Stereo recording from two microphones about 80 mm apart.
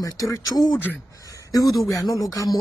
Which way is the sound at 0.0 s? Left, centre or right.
Left.